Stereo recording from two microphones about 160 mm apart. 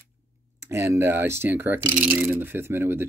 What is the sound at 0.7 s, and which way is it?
Speech, 15° right (ahead or behind).